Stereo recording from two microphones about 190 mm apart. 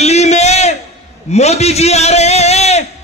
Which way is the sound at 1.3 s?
35° left (ahead or behind).